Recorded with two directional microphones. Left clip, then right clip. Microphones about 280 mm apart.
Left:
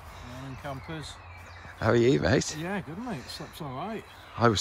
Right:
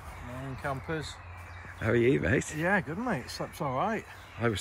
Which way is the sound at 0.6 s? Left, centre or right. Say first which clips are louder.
Right 5 dB; centre.